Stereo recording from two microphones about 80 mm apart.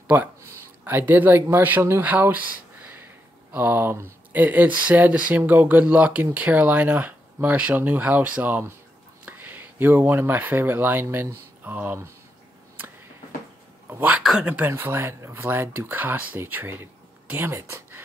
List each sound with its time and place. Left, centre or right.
0.1 s speech: right
13.8 s speech: right
14.2 s speech: centre
14.7 s speech: right